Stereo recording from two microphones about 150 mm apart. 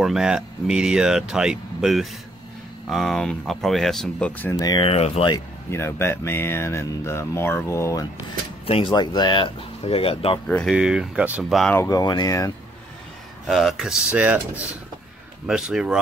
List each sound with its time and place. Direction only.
0.0 s speech: 5° right (ahead or behind)
4.6 s speech: 25° left (ahead or behind)
4.8 s speech: 40° left (ahead or behind)
5.7 s speech: 15° left (ahead or behind)
8.6 s speech: 40° left (ahead or behind)
10.7 s speech: 5° right (ahead or behind)
11.7 s speech: 15° left (ahead or behind)
13.5 s speech: centre (ahead or behind)
15.4 s speech: 5° right (ahead or behind)